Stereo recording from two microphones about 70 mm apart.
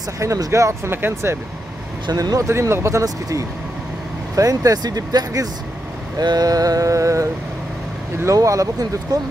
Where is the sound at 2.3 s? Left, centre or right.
Right.